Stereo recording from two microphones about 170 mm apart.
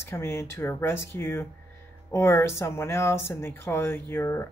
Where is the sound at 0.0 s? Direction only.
15° left (ahead or behind).